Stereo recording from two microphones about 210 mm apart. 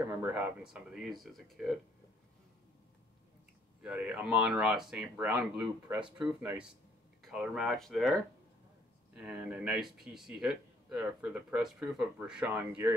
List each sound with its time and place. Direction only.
0.2 s speech: 10° right (ahead or behind)
3.8 s speech: 5° right (ahead or behind)